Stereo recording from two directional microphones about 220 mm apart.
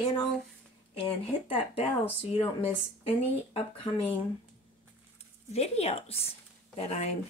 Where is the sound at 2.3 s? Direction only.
25° left (ahead or behind).